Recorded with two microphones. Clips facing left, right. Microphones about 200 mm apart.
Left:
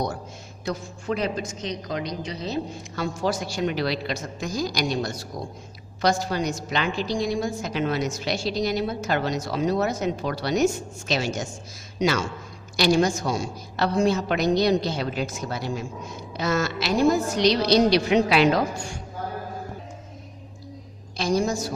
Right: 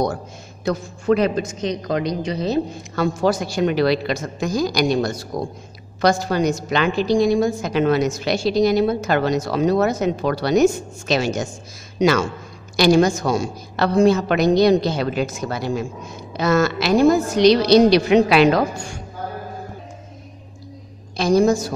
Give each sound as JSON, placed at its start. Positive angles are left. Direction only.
{"t": 0.7, "sound": "a woman's voice", "side_deg": -65}
{"t": 21.2, "sound": "a woman's voice", "side_deg": -65}